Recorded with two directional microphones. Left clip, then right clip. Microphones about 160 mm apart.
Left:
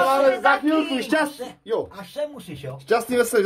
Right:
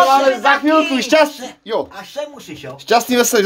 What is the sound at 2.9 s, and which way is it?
Speech, 40° right (ahead or behind).